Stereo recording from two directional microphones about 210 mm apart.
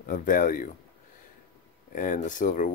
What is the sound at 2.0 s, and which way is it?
Speech, 40° left (ahead or behind).